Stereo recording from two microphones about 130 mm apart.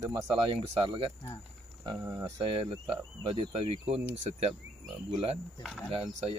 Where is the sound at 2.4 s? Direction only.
45° right (ahead or behind).